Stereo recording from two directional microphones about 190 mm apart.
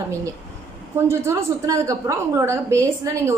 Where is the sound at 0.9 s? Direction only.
15° right (ahead or behind).